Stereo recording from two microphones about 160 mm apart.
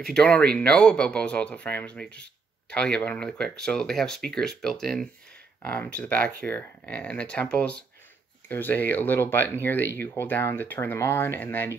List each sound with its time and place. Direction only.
0.0 s speech: 5° left (ahead or behind)